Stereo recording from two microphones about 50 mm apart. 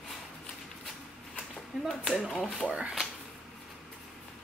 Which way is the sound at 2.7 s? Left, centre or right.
Right.